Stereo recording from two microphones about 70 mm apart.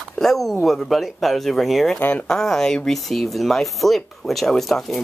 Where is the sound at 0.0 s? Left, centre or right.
Centre.